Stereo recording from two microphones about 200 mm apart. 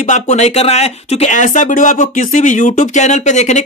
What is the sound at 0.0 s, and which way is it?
Speech, 35° left (ahead or behind).